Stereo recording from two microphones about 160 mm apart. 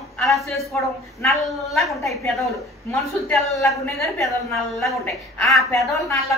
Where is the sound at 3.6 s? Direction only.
20° left (ahead or behind).